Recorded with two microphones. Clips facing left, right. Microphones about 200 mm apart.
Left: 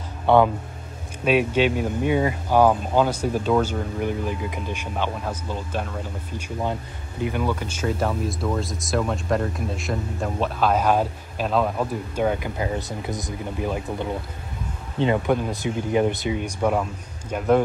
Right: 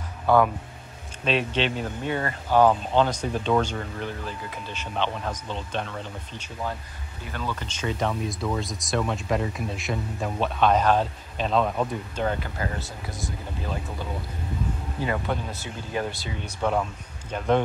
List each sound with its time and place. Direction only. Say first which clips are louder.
0.3 s speech: left 3 dB; 25° left (ahead or behind)
1.2 s speech: left 6 dB; 10° left (ahead or behind)
6.6 s speech: left 4 dB; 20° left (ahead or behind)